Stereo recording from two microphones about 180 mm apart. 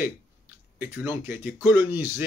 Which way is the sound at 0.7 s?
15° right (ahead or behind).